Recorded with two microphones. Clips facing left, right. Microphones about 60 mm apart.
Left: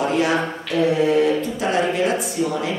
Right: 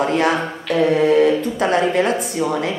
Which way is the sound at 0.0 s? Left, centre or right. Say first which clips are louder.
Right 2 dB; right.